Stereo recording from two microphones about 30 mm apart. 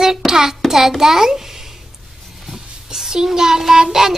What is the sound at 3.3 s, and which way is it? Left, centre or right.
Child singing, centre.